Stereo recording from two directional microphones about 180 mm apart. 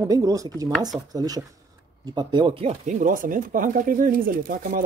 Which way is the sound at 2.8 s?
45° right (ahead or behind).